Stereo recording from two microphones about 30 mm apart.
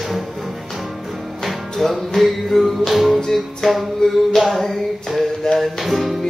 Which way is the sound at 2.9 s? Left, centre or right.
Centre.